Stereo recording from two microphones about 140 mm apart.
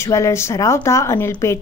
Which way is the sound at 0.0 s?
20° left (ahead or behind).